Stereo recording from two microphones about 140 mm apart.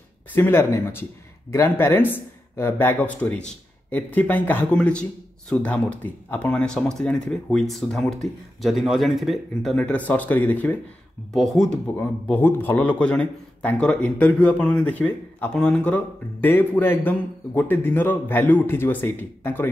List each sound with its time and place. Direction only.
0.3 s speech: 15° left (ahead or behind)
11.3 s speech: centre (ahead or behind)
12.0 s speech: 15° left (ahead or behind)